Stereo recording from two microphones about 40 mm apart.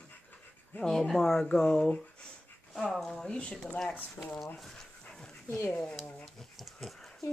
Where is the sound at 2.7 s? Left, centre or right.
Centre.